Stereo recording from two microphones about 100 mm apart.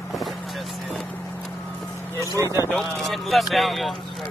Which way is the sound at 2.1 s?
30° right (ahead or behind).